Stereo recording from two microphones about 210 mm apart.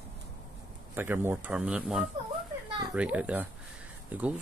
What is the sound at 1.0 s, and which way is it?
Speech, 10° right (ahead or behind).